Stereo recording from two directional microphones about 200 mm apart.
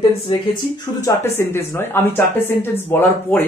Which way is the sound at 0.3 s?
15° left (ahead or behind).